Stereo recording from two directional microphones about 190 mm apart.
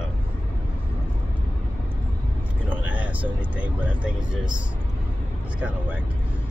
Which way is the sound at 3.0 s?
10° right (ahead or behind).